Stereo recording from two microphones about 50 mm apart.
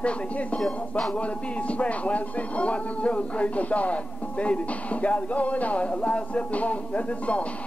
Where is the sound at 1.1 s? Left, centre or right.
Left.